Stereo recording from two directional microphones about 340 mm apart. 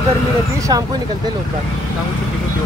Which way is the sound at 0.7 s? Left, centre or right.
Centre.